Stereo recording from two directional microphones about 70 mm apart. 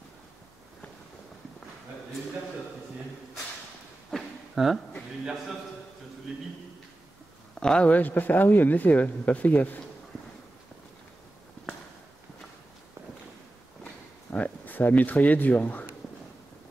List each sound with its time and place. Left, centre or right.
4.1 s a sound: centre
5.2 s a man's voice: centre
7.6 s speech: centre
7.9 s speech: left
14.3 s speech: left